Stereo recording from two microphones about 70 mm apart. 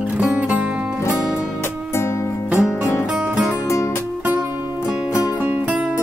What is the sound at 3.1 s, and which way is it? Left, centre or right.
Music, centre.